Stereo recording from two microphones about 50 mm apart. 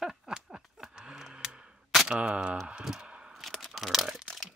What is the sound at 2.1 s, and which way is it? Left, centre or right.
Single-lens reflex camera, right.